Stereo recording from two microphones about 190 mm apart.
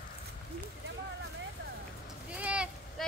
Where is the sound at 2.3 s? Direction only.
5° right (ahead or behind).